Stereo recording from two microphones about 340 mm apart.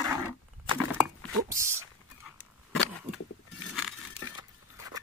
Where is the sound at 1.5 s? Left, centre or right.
Centre.